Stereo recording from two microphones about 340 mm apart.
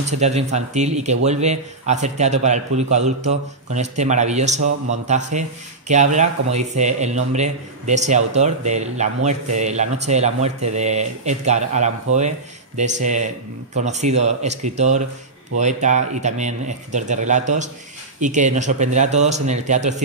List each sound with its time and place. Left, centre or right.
0.2 s a man's voice: centre